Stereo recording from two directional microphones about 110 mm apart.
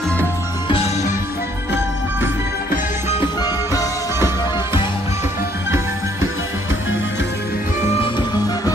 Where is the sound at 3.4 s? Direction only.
30° left (ahead or behind).